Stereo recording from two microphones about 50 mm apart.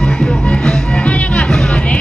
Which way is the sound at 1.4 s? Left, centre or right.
Centre.